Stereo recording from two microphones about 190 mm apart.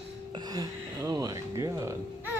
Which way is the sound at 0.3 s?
20° right (ahead or behind).